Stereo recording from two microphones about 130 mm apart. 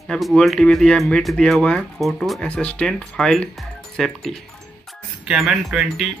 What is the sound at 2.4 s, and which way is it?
Speech, 10° left (ahead or behind).